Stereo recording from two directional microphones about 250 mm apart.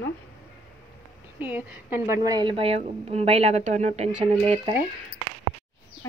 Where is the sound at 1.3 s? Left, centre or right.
Centre; by 4.7 s right.